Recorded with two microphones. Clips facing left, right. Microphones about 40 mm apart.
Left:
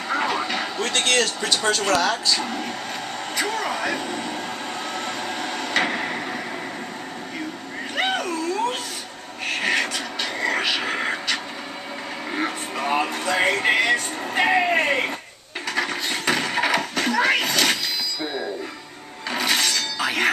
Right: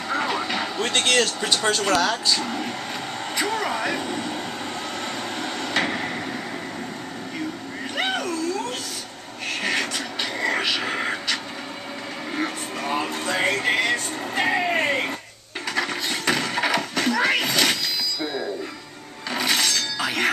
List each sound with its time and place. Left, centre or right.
0.1 s vehicle: centre
0.7 s speech: centre
5.0 s vehicle: centre
5.8 s hammer: centre
7.9 s a sound: centre
9.5 s a sound: centre
12.4 s vehicle: left
13.3 s music: left
14.6 s a sound: left
15.7 s music: centre
18.2 s a sound: centre
19.3 s music: centre